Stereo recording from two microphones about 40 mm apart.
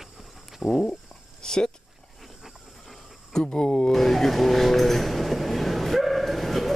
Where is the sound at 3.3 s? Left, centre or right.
Centre.